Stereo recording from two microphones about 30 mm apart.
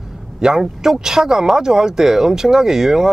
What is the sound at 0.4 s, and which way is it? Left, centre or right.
Speech, centre.